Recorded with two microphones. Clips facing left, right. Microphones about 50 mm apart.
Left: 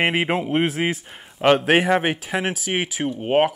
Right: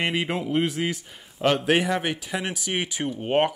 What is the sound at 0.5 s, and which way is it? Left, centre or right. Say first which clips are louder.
Speech: left 3 dB; left.